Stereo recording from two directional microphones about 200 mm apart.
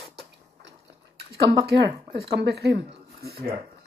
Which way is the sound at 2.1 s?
55° right (ahead or behind).